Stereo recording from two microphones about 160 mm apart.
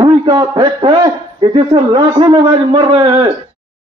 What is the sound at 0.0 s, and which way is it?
A man's voice, 30° right (ahead or behind).